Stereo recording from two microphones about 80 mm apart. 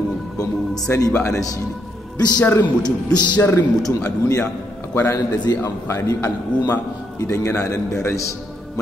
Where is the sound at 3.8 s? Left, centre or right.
Left.